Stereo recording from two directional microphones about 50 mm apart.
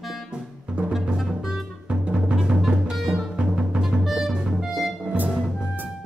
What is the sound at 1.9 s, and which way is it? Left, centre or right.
Music, right.